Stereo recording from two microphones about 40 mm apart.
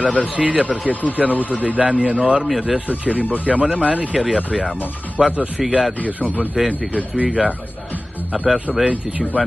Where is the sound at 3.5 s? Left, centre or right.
Right.